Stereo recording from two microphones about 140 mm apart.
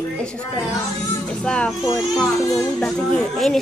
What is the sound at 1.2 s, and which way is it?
Speech, 5° left (ahead or behind).